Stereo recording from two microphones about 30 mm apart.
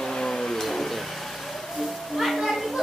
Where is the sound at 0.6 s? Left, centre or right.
Centre.